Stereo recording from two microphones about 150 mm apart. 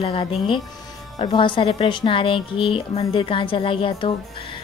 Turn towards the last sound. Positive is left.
turn(degrees=35)  # may be behind; listen again after turning